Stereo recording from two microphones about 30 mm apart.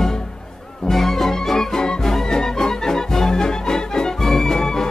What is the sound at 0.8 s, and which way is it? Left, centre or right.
Music, centre.